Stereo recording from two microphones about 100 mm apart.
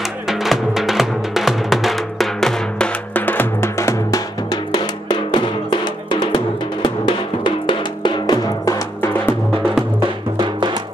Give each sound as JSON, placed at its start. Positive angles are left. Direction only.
{"t": 0.3, "sound": "drum", "side_deg": -5}
{"t": 3.2, "sound": "drum", "side_deg": 20}
{"t": 4.5, "sound": "drum", "side_deg": 45}
{"t": 10.3, "sound": "music", "side_deg": -50}